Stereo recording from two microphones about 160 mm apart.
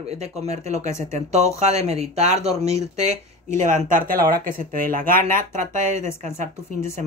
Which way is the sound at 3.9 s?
65° right (ahead or behind).